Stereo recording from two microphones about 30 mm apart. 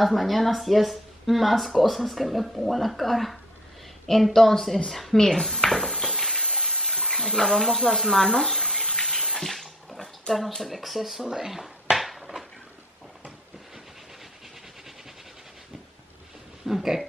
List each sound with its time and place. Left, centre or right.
0.0 s a woman's voice: centre
5.1 s a woman's voice: centre
6.0 s a sound: centre
6.5 s water: centre
7.2 s speech: centre
9.0 s bathtub: centre
10.5 s speech: centre
12.0 s a sound: centre
16.6 s speech: centre